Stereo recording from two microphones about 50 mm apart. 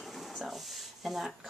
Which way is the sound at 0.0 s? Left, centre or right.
Centre.